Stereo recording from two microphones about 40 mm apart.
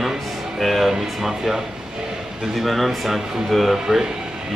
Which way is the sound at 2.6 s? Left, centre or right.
Centre.